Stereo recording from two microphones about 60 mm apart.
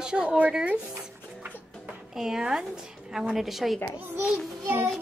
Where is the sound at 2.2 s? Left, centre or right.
Centre.